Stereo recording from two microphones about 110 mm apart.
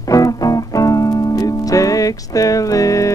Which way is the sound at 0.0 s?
30° left (ahead or behind).